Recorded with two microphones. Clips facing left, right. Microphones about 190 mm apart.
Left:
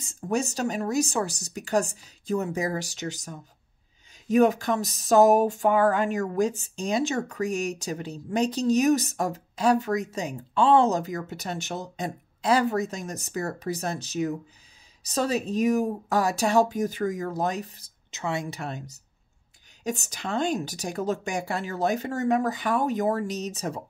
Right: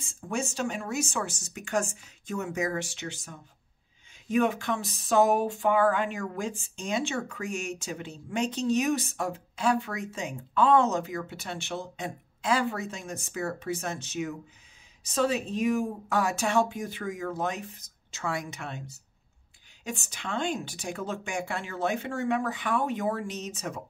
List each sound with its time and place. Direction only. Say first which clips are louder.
0.0 s speech: left 5 dB; 40° left (ahead or behind)
18.1 s speech: left 3 dB; 25° left (ahead or behind)